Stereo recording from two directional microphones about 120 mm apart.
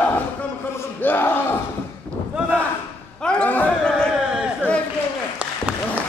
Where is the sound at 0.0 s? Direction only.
10° left (ahead or behind).